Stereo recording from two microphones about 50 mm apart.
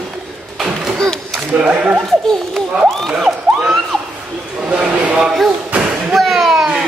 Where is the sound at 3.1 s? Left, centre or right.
Centre.